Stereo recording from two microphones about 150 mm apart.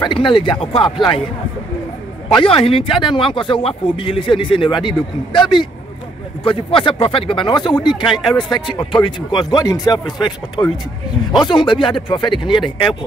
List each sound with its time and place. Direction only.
0.0 s speech: 35° left (ahead or behind)
2.2 s speech: 35° left (ahead or behind)